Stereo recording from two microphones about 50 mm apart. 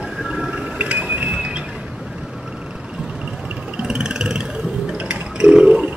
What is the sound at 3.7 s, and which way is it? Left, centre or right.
Vehicle, centre.